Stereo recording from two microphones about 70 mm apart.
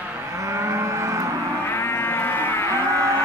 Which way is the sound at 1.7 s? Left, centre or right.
Left.